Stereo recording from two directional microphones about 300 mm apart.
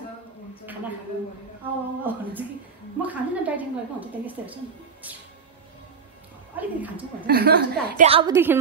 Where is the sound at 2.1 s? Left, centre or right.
Centre.